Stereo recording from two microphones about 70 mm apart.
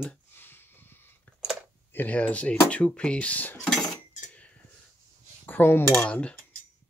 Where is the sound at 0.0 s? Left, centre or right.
Left.